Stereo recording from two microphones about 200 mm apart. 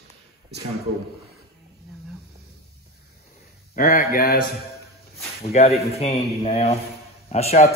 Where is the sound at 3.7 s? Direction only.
45° left (ahead or behind).